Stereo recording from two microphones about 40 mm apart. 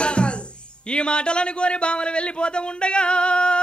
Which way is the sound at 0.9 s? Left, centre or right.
Left.